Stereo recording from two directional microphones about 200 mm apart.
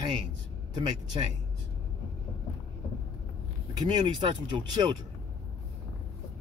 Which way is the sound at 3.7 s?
20° right (ahead or behind).